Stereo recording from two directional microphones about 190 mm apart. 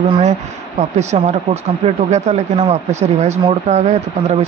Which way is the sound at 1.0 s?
35° right (ahead or behind).